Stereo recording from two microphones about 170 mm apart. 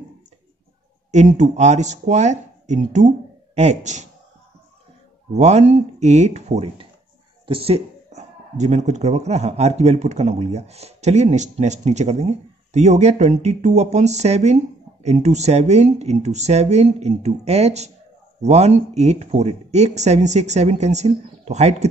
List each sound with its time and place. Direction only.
1.1 s speech: 45° right (ahead or behind)
5.3 s speech: 40° right (ahead or behind)